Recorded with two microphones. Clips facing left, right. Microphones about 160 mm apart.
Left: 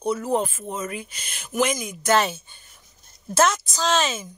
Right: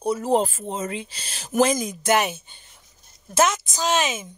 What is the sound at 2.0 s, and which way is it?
A woman's voice, 20° right (ahead or behind).